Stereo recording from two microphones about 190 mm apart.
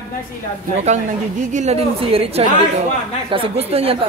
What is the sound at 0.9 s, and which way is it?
A woman's voice, 35° right (ahead or behind).